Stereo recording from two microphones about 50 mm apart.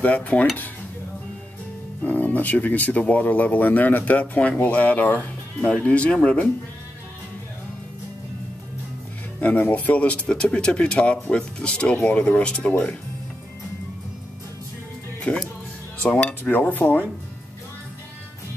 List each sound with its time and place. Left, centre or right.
0.0 s speech: left
2.0 s speech: left
5.6 s speech: centre
9.4 s speech: left
15.3 s speech: left